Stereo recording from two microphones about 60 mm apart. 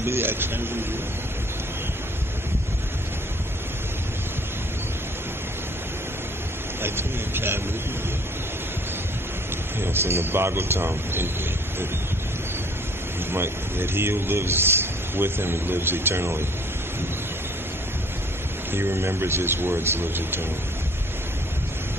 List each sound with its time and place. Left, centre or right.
0.0 s speech: right
6.8 s speech: right
9.8 s speech: right
13.3 s speech: right
18.7 s speech: right